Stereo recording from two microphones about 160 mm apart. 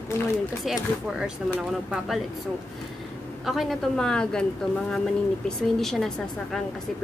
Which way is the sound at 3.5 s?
Centre (ahead or behind).